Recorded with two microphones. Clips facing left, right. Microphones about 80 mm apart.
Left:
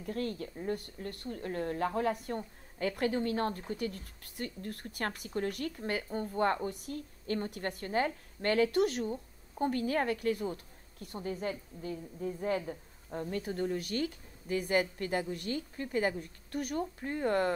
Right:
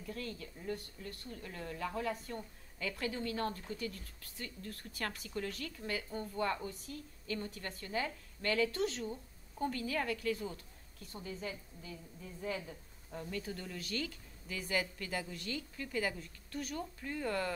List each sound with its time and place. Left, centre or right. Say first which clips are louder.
0.0 s a woman's voice: left 8 dB; left
9.1 s a woman's voice: left 6 dB; left